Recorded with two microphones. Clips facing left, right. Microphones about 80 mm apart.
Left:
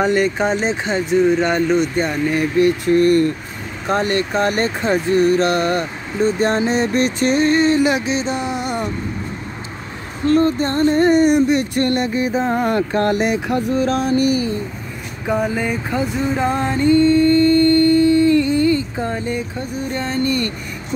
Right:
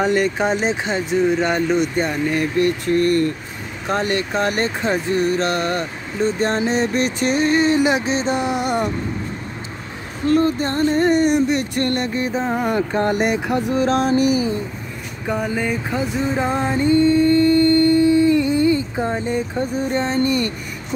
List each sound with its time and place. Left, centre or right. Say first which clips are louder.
0.0 s speech: left 1 dB; centre
3.8 s speech: left 2 dB; centre
8.0 s a sound: even; right
8.5 s speech: right 2 dB; right
10.2 s speech: left 2 dB; centre
12.7 s speech: left 2 dB; centre
13.6 s music: right 2 dB; centre
14.1 s speech: even; centre
15.2 s a sound: left 2 dB; centre